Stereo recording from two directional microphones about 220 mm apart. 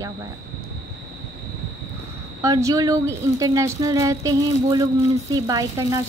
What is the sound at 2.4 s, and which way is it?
Speech, 15° right (ahead or behind).